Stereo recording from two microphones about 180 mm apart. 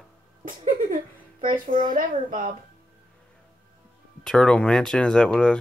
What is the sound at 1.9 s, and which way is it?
Speech, 50° right (ahead or behind).